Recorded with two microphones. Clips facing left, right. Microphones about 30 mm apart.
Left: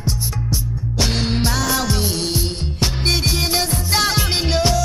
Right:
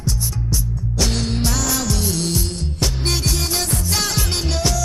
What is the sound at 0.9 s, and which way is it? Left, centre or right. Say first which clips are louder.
Music: left 2 dB; left.